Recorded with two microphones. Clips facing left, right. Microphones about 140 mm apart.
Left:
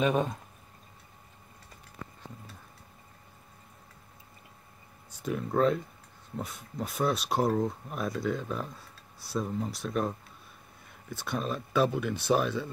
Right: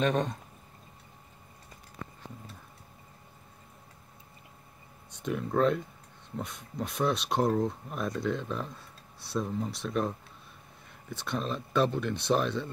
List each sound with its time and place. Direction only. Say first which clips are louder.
0.0 s speech: left 1 dB; 5° left (ahead or behind)
5.1 s speech: even; 5° left (ahead or behind)